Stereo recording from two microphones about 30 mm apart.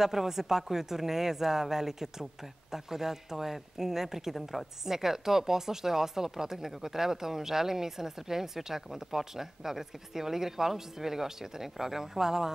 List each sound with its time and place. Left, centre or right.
0.0 s speech: centre
4.4 s a woman's voice: centre
4.8 s speech: centre